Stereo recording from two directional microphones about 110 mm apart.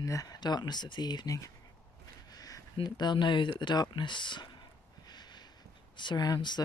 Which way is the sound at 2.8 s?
40° left (ahead or behind).